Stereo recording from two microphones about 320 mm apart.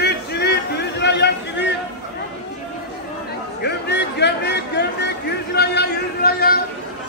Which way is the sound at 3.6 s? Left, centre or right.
Left.